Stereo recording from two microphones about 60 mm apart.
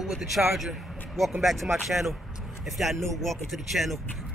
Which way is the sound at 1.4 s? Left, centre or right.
Centre.